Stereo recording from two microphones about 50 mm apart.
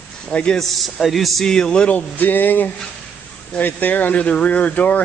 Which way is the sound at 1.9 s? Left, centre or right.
Left.